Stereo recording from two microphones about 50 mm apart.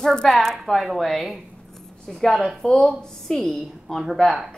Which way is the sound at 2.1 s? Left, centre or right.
Centre.